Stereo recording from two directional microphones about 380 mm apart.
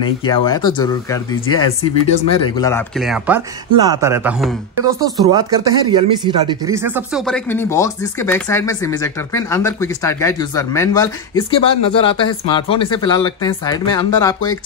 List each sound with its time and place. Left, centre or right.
0.3 s speech: centre